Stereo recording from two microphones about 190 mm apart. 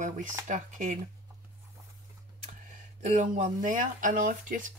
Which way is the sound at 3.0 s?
40° right (ahead or behind).